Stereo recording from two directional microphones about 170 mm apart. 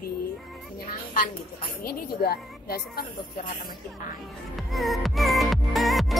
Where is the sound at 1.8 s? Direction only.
65° left (ahead or behind).